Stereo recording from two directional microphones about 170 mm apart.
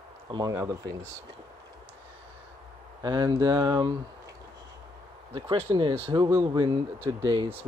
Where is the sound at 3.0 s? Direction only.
25° right (ahead or behind).